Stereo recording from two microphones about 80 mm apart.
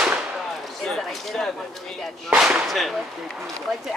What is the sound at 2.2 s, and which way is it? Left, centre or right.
Speech, centre.